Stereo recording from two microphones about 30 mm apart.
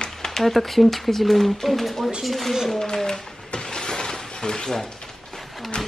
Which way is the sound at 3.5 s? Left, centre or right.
Left.